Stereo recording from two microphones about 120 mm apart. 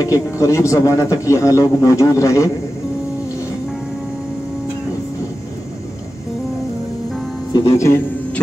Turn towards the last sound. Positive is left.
turn(degrees=25)  # may be behind; listen again after turning